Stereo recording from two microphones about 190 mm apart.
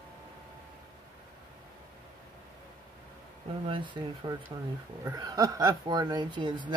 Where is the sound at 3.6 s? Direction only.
25° right (ahead or behind).